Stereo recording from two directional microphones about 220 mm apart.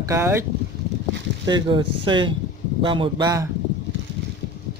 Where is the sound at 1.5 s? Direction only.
20° right (ahead or behind).